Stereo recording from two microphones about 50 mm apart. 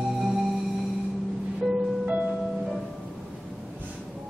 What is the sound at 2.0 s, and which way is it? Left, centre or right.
Music, right.